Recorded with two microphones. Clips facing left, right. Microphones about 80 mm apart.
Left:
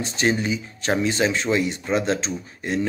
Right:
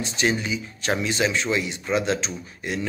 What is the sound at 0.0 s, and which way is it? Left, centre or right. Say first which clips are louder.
Speech: left 2 dB; left.